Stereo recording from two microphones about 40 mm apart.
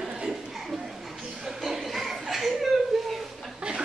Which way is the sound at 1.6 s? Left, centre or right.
Centre.